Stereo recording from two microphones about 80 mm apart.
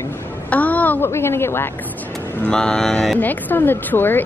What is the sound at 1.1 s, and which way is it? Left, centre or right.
Speech, left.